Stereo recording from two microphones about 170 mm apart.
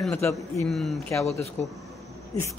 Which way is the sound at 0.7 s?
Centre (ahead or behind).